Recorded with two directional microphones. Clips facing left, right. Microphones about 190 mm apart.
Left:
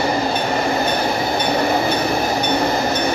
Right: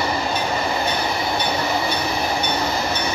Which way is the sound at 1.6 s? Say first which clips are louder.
Left 5 dB; 50° left (ahead or behind).